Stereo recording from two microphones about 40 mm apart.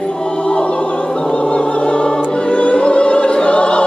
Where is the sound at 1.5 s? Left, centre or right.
Left.